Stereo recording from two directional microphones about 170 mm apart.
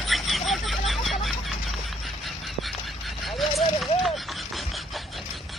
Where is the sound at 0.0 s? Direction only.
Centre (ahead or behind).